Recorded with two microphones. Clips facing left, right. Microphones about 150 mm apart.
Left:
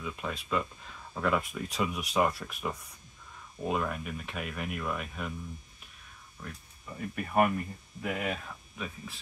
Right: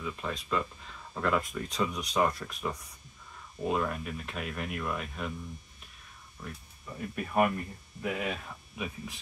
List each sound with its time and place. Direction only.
0.0 s speech: 5° left (ahead or behind)
7.0 s speech: centre (ahead or behind)
8.7 s speech: 15° right (ahead or behind)